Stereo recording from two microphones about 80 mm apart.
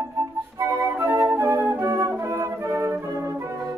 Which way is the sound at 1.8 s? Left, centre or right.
Right.